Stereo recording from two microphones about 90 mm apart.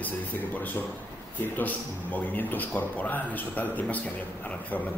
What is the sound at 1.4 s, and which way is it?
A man's voice, 20° left (ahead or behind).